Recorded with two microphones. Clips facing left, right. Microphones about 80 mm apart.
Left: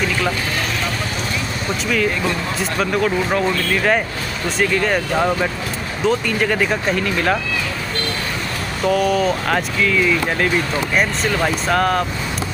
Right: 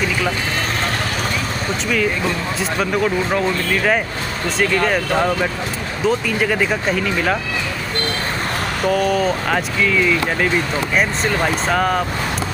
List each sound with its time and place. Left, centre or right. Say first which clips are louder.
2.8 s speech: even; centre
8.8 s speech: left 1 dB; centre